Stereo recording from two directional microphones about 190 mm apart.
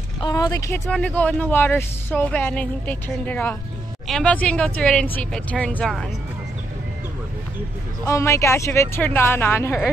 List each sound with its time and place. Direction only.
0.2 s speech: 20° left (ahead or behind)
0.8 s speech: 5° left (ahead or behind)
8.1 s speech: 15° left (ahead or behind)